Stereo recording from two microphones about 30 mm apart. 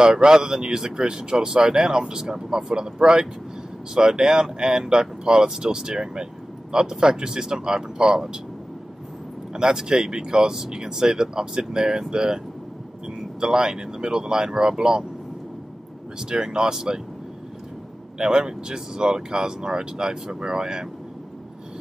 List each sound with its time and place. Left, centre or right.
0.0 s speech: right
9.5 s speech: right
13.4 s speech: right
16.2 s speech: right
18.1 s speech: right